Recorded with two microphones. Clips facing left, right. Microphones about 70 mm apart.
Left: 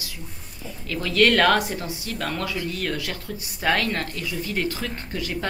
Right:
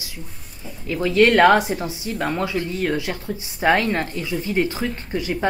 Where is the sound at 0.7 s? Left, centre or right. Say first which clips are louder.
Right 6 dB; centre.